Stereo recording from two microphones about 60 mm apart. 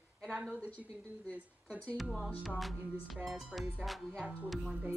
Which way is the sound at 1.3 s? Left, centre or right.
Right.